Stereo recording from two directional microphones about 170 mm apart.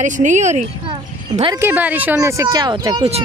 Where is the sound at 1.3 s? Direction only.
25° right (ahead or behind).